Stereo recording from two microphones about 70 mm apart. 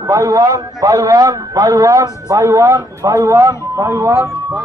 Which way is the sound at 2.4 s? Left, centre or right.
Right.